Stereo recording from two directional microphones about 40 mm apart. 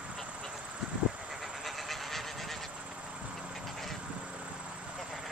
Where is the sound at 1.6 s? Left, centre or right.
Centre.